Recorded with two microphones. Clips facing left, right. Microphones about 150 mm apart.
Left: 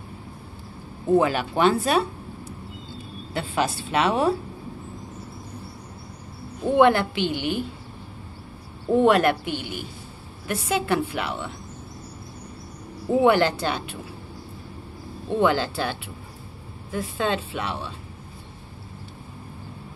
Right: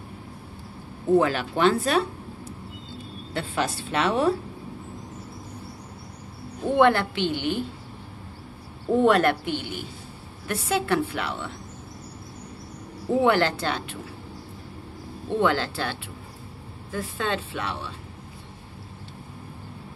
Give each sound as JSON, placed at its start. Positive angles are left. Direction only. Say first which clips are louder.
{"t": 1.2, "sound": "a woman's voice", "louder": "left 1 dB", "side_deg": 10}
{"t": 3.3, "sound": "a woman's voice", "louder": "left 2 dB", "side_deg": 10}
{"t": 6.6, "sound": "a woman's voice", "louder": "left 2 dB", "side_deg": 15}
{"t": 8.9, "sound": "a woman's voice", "louder": "left 1 dB", "side_deg": 5}
{"t": 13.1, "sound": "a woman's voice", "louder": "left 2 dB", "side_deg": 15}
{"t": 15.2, "sound": "a woman's voice", "louder": "left 2 dB", "side_deg": 15}